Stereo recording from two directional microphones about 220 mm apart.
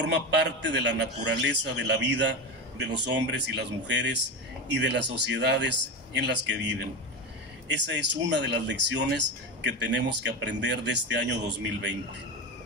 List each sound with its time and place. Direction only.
0.0 s speech: 50° right (ahead or behind)